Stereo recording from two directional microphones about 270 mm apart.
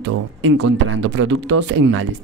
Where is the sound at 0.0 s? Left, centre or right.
Right.